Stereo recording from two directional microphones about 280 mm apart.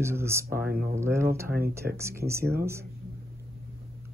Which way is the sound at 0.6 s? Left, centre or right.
Right.